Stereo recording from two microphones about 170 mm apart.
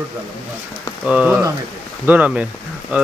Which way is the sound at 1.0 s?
10° right (ahead or behind).